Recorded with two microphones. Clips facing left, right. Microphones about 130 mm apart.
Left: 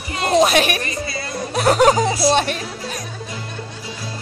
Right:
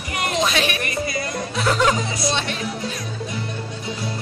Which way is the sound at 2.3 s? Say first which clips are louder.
Left 7 dB; 50° left (ahead or behind).